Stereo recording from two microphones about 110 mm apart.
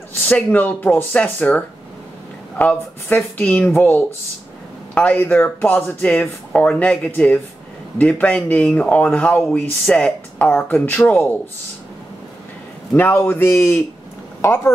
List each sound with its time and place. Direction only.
0.3 s speech: 15° left (ahead or behind)
12.9 s a man's voice: 20° left (ahead or behind)